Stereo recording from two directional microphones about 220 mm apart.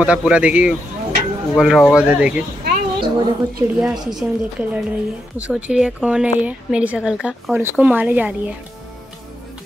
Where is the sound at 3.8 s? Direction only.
Centre (ahead or behind).